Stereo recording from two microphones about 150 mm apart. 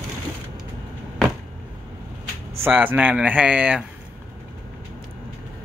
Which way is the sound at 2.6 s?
15° right (ahead or behind).